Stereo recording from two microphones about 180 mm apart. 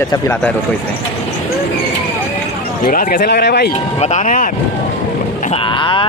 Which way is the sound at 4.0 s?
40° left (ahead or behind).